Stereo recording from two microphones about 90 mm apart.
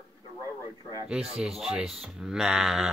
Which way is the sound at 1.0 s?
10° right (ahead or behind).